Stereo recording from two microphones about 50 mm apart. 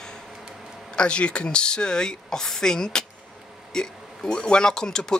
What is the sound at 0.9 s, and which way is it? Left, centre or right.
Speech, left.